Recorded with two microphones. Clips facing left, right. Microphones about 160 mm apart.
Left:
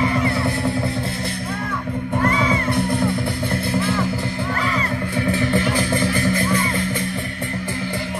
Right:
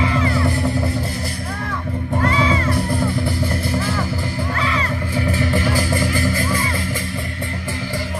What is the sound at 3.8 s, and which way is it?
Music, 5° right (ahead or behind).